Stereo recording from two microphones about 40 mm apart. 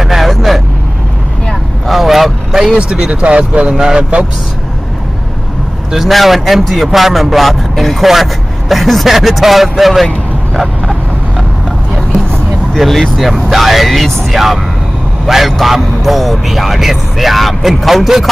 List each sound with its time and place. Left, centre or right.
0.0 s vehicle: centre
1.9 s vehicle: centre
3.1 s speech: right
3.7 s a man's voice: centre
5.9 s a man's voice: centre
10.5 s vehicle: centre
12.7 s a man's voice: centre